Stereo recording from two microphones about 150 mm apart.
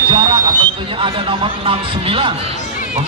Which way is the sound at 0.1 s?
35° right (ahead or behind).